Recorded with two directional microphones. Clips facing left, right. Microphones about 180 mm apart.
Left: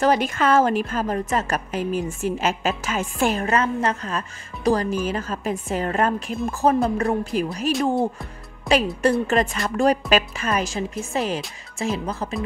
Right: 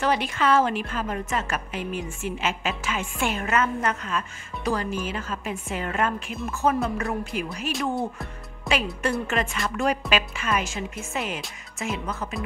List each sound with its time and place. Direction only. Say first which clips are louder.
0.0 s a woman's voice: left 4 dB; 45° left (ahead or behind)
8.7 s speech: left 6 dB; centre (ahead or behind)
9.3 s a woman's voice: left 5 dB; 35° left (ahead or behind)